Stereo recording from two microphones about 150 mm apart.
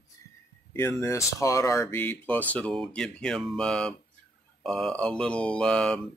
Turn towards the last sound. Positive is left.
turn(degrees=5)  # may be behind; listen again after turning